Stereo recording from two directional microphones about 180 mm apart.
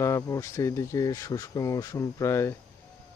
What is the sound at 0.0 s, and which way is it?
Speech, 15° left (ahead or behind).